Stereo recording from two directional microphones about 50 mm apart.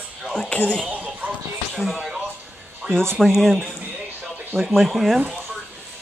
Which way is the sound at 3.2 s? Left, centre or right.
Centre.